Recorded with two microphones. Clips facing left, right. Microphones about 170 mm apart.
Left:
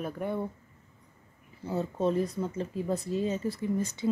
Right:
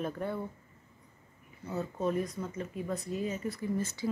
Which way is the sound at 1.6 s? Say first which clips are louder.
Left 4 dB; 30° left (ahead or behind).